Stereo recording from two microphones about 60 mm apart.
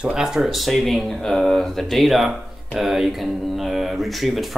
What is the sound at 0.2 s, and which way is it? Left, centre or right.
Speech, centre.